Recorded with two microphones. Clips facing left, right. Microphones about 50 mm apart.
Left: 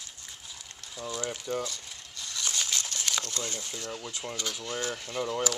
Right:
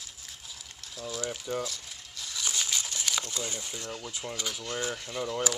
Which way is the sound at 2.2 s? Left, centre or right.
Centre.